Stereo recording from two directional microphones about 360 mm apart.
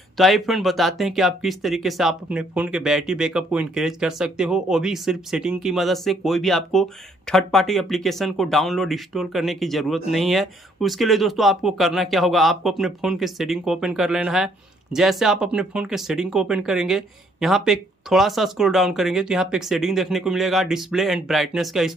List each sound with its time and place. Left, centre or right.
0.2 s speech: centre